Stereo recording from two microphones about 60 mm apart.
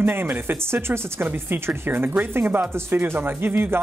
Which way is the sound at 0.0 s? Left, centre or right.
Right.